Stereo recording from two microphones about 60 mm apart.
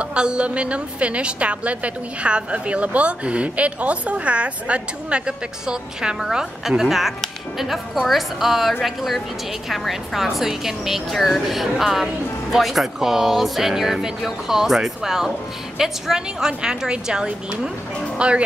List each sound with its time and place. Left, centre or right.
0.0 s a woman's voice: centre